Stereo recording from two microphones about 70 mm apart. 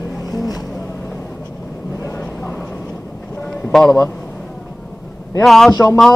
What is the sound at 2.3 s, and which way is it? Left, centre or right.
Vehicle, left.